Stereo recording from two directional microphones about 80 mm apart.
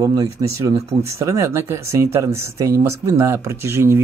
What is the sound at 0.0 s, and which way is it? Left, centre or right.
Speech, right.